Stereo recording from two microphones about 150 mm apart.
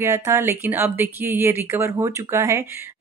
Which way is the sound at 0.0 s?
20° right (ahead or behind).